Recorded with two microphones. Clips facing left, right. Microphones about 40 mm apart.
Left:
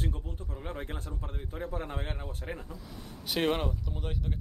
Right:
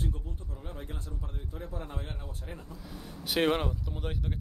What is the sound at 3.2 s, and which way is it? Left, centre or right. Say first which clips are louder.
Speech: right 2 dB; centre.